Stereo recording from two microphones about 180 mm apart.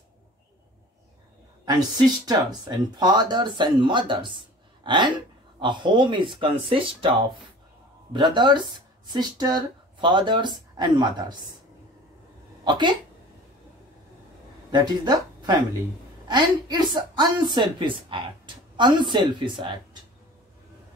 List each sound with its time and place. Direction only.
2.2 s a woman's voice: 25° right (ahead or behind)
12.6 s speech: 25° right (ahead or behind)
14.7 s a woman's voice: 25° right (ahead or behind)